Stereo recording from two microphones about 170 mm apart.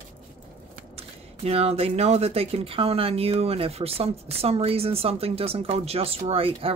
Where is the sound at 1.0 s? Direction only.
35° right (ahead or behind).